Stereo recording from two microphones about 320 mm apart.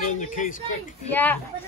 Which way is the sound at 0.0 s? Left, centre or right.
Left.